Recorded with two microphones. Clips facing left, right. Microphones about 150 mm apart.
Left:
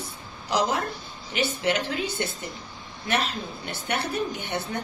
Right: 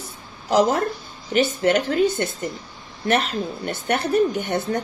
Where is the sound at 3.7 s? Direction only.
45° right (ahead or behind).